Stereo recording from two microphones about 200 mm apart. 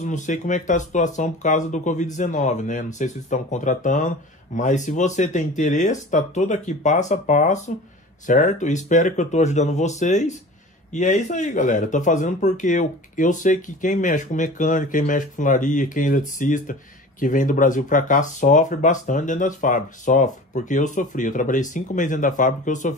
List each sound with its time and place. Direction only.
0.0 s speech: 40° left (ahead or behind)